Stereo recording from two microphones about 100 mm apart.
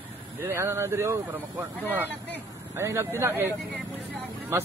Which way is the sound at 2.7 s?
25° right (ahead or behind).